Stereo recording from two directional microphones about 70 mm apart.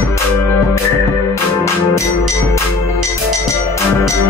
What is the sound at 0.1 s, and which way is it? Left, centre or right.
Music, left.